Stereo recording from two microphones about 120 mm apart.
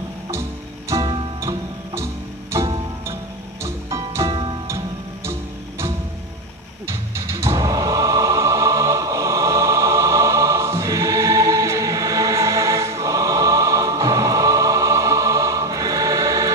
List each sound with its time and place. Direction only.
0.3 s music: 25° right (ahead or behind)
3.6 s music: 25° right (ahead or behind)
4.3 s music: 40° right (ahead or behind)
5.2 s music: 20° right (ahead or behind)